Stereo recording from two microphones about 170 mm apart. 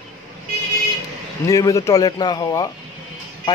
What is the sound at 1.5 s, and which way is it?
Speech, 20° left (ahead or behind).